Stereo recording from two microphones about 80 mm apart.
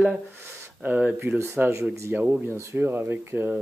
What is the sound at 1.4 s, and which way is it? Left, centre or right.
Speech, right.